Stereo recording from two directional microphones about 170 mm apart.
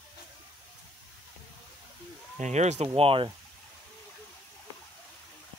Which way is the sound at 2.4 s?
40° right (ahead or behind).